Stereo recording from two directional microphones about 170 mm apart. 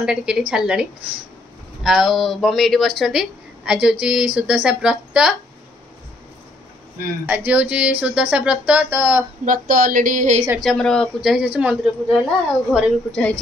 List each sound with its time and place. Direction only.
0.0 s a woman's voice: 5° right (ahead or behind)
7.2 s speech: 10° right (ahead or behind)
9.4 s speech: 50° right (ahead or behind)
10.6 s speech: 5° left (ahead or behind)